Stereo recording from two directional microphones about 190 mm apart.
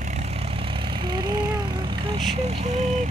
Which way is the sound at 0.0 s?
35° right (ahead or behind).